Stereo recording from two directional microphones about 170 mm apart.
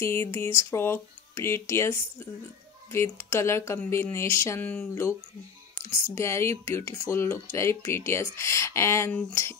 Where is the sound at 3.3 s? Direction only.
15° left (ahead or behind).